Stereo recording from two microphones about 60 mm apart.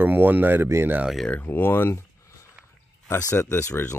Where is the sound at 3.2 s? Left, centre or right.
Left.